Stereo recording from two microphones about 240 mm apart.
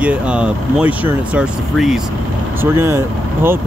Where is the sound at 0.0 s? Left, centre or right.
Centre.